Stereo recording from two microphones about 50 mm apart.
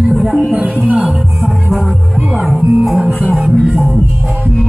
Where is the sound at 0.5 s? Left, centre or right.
Right.